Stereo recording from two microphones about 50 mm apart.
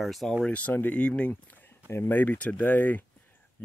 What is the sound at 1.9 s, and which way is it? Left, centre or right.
Speech, left.